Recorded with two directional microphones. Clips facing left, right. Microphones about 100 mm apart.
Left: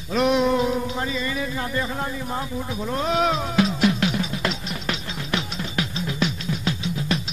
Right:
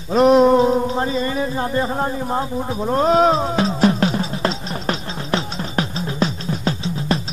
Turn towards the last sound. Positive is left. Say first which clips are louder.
# right 4 dB
turn(degrees=-35)  # may be behind; listen again after turning